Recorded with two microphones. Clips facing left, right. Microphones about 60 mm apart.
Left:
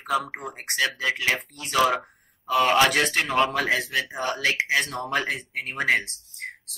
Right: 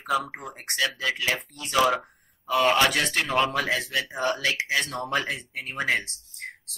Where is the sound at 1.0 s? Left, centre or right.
Left.